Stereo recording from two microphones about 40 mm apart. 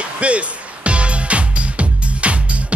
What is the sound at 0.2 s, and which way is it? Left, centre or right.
Music, right.